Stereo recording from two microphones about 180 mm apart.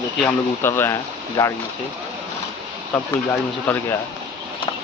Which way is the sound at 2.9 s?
5° left (ahead or behind).